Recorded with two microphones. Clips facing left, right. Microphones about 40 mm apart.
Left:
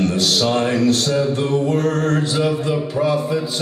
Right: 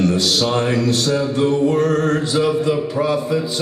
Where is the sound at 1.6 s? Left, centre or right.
Centre.